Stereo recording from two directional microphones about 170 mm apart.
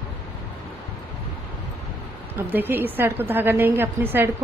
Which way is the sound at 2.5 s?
10° right (ahead or behind).